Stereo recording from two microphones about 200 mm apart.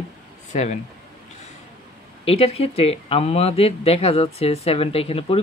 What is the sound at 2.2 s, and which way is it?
Speech, 30° left (ahead or behind).